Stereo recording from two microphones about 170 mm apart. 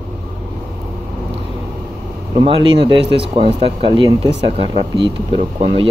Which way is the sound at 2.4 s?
30° right (ahead or behind).